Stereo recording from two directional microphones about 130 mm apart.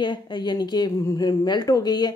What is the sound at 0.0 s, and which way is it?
Speech, 35° left (ahead or behind).